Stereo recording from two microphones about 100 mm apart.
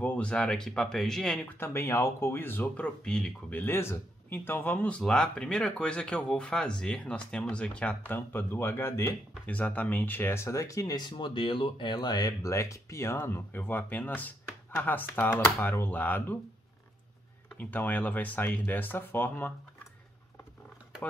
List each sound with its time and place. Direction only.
0.0 s speech: 10° left (ahead or behind)
1.6 s speech: 25° left (ahead or behind)
9.5 s speech: 15° left (ahead or behind)
17.6 s speech: 15° left (ahead or behind)